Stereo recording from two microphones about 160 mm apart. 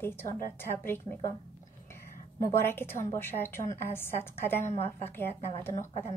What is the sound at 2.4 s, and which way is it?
A woman's voice, 15° left (ahead or behind).